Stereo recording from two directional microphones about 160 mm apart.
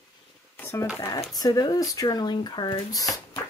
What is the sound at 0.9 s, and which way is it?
Speech, 20° left (ahead or behind).